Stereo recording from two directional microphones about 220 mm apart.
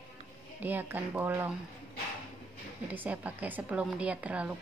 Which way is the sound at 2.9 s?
5° right (ahead or behind).